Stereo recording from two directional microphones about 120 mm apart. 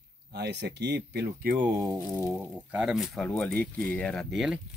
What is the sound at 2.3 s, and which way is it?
Speech, 10° right (ahead or behind).